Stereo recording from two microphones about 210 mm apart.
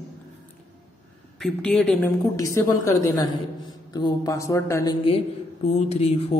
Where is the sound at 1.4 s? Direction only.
5° left (ahead or behind).